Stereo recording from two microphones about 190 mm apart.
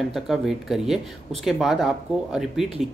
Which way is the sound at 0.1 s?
Centre (ahead or behind).